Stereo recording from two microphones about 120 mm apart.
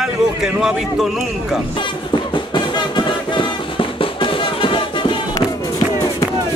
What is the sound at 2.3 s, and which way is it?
Music, 40° left (ahead or behind).